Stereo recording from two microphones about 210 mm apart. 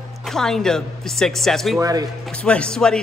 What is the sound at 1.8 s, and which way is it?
Speech, 20° right (ahead or behind).